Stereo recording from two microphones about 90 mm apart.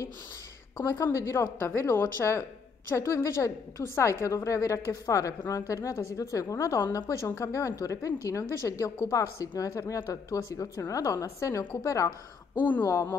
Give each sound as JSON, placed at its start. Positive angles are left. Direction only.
{"t": 0.8, "sound": "speech", "side_deg": 35}